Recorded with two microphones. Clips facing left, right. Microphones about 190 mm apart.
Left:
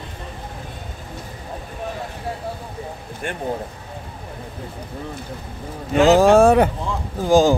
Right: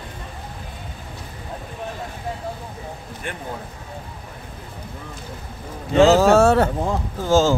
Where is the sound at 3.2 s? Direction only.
50° left (ahead or behind).